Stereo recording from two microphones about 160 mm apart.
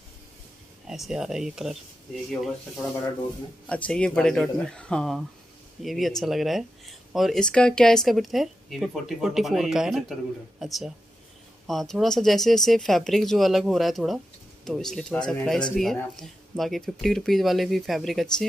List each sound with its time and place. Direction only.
0.8 s speech: centre (ahead or behind)
3.6 s speech: 5° left (ahead or behind)